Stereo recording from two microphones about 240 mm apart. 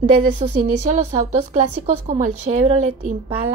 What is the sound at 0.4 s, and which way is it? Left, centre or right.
A woman's voice, right.